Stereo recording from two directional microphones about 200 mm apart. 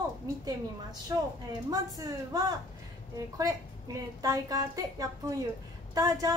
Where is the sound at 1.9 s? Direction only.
20° right (ahead or behind).